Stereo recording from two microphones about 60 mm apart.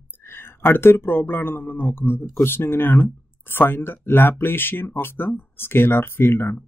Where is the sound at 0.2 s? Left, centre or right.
Left.